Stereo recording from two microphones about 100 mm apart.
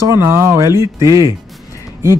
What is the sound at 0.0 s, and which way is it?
Speech, 30° right (ahead or behind).